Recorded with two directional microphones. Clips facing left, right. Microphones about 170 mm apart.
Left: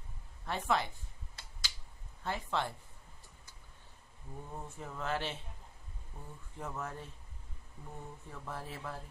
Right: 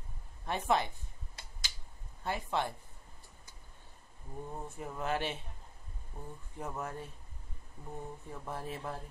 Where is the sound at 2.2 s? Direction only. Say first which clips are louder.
Right 2 dB; 15° right (ahead or behind).